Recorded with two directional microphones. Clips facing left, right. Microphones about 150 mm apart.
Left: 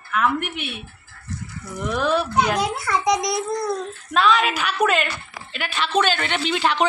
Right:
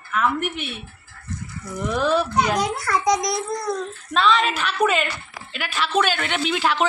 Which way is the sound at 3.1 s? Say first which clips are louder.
Even; 25° left (ahead or behind).